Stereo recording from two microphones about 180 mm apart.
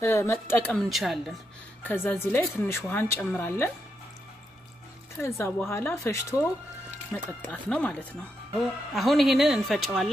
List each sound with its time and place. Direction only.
0.0 s speech: 15° left (ahead or behind); by 1.3 s centre (ahead or behind)
1.8 s speech: 10° left (ahead or behind)
5.7 s speech: 15° left (ahead or behind)